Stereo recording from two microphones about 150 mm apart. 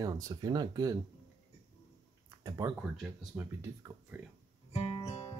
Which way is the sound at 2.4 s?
25° right (ahead or behind).